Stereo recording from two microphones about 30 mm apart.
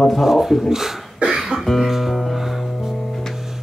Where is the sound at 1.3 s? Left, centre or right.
Centre.